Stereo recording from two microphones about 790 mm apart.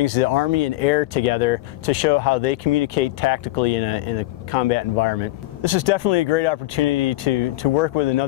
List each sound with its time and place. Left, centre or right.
0.0 s speech: left